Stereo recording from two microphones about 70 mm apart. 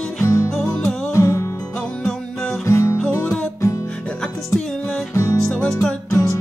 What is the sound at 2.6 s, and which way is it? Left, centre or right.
Music, left.